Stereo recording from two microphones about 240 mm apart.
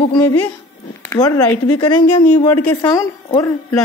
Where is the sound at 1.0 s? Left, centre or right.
Centre.